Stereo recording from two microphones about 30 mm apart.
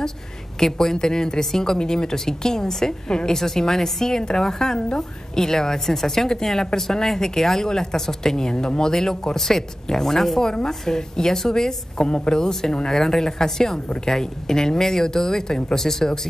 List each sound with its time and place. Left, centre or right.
0.6 s a woman's voice: centre
10.4 s a woman's voice: left